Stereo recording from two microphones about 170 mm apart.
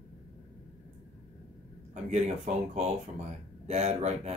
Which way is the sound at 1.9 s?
45° right (ahead or behind).